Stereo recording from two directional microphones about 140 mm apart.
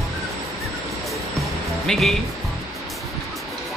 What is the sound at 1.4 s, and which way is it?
Music, centre (ahead or behind).